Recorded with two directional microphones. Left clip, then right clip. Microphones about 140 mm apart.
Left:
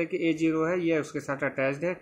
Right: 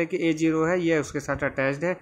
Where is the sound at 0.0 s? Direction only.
25° right (ahead or behind).